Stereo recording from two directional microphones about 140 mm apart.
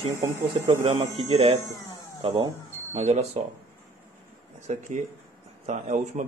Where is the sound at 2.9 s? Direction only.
55° right (ahead or behind).